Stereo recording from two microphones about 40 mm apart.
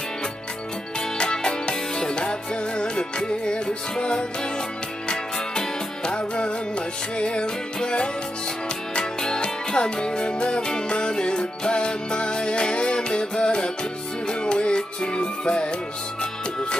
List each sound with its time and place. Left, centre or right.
1.1 s music: centre
9.2 s music: centre